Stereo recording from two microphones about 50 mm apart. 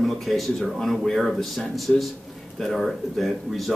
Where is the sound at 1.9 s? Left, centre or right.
Centre.